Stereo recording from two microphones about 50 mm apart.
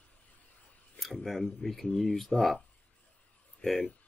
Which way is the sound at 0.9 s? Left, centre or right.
Centre.